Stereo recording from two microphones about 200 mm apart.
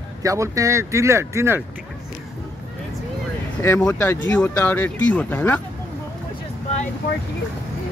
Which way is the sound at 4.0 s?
10° left (ahead or behind).